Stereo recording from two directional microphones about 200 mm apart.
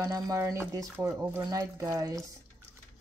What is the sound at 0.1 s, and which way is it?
Speech, 15° right (ahead or behind).